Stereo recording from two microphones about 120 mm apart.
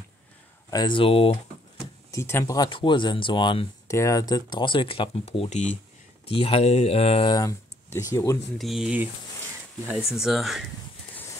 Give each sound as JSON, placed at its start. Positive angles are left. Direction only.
{"t": 0.7, "sound": "speech", "side_deg": 35}
{"t": 2.0, "sound": "speech", "side_deg": 25}
{"t": 2.5, "sound": "speech", "side_deg": 35}
{"t": 3.8, "sound": "speech", "side_deg": 25}
{"t": 7.2, "sound": "speech", "side_deg": 30}
{"t": 8.5, "sound": "speech", "side_deg": 0}